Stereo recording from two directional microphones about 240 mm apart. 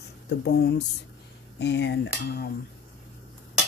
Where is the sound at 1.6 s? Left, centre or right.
Left.